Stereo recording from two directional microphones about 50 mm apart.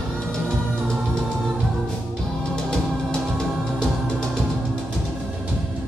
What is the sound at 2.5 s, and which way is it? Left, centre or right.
Music, centre.